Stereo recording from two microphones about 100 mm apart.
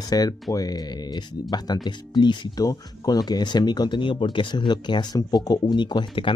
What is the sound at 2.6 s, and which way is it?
Speech, 35° left (ahead or behind).